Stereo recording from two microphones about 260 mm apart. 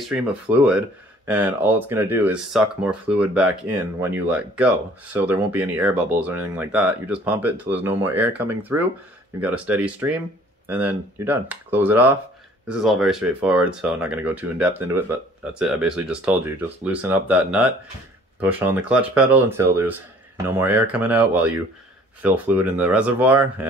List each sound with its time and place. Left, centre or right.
0.1 s speech: centre